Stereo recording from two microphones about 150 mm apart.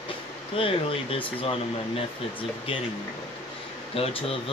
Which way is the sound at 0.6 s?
35° left (ahead or behind).